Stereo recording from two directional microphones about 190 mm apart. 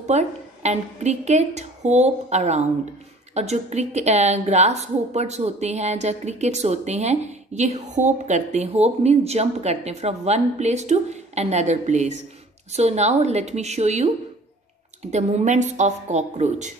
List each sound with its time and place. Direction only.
0.0 s a woman's voice: 35° right (ahead or behind)